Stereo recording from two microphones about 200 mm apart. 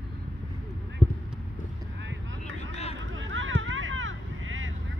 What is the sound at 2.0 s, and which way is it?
Vehicle, 65° right (ahead or behind).